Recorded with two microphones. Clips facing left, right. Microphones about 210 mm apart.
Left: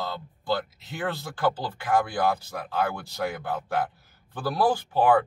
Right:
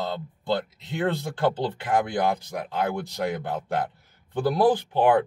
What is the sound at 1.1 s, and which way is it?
Speech, 25° right (ahead or behind).